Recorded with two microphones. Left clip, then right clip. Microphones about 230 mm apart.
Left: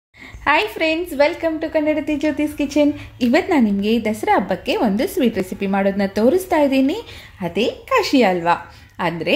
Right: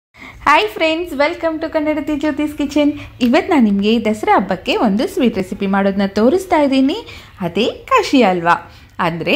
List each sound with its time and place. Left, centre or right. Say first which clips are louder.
0.4 s a woman's voice: right 5 dB; centre